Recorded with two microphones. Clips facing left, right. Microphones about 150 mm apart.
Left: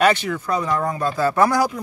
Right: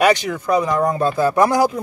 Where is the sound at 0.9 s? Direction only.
30° right (ahead or behind).